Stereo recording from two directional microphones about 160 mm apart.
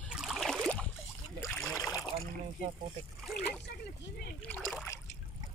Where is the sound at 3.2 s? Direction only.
Centre (ahead or behind).